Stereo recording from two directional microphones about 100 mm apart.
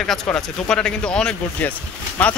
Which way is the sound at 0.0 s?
5° left (ahead or behind).